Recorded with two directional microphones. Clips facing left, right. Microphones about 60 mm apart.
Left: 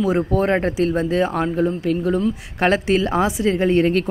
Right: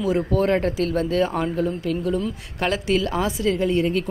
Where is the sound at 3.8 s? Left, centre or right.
Left.